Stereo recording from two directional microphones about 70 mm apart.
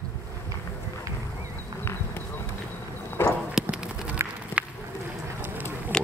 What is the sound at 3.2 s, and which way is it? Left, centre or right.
Clip-clop, left.